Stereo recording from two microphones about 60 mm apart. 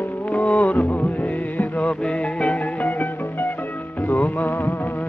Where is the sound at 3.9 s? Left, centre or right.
Left.